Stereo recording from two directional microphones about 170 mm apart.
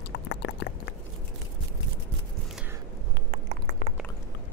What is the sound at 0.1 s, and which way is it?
Clip-clop, 90° left.